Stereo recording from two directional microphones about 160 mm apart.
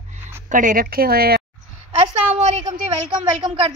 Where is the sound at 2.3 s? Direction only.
40° right (ahead or behind).